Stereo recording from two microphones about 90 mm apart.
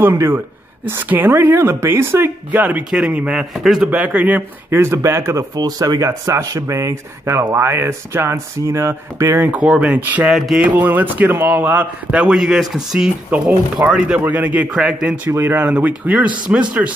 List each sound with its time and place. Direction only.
0.0 s a man's voice: 25° right (ahead or behind); by 3.9 s 5° right (ahead or behind)
3.9 s a man's voice: 15° right (ahead or behind)
4.6 s speech: 30° right (ahead or behind)
5.6 s speech: 45° right (ahead or behind)
9.6 s a man's voice: 10° right (ahead or behind)
10.3 s music: 5° right (ahead or behind)
10.7 s a man's voice: 20° right (ahead or behind)
15.3 s a man's voice: 20° right (ahead or behind)